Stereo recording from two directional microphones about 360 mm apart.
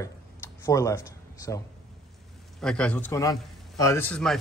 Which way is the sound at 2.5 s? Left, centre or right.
Centre.